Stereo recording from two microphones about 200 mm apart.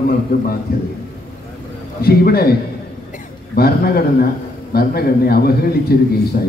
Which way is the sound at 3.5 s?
50° left (ahead or behind).